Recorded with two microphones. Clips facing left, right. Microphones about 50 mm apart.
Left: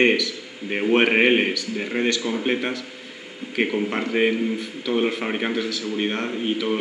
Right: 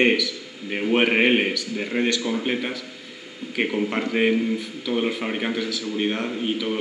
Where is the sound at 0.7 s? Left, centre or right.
Centre.